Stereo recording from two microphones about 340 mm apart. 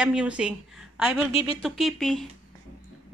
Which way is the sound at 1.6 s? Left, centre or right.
Centre.